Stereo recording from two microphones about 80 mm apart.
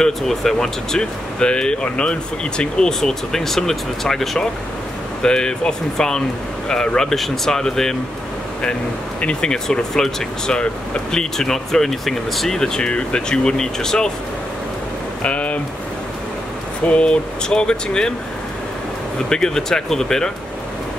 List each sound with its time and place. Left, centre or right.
0.0 s speech: centre
9.2 s speech: centre
15.2 s speech: centre
16.8 s speech: centre
19.2 s speech: centre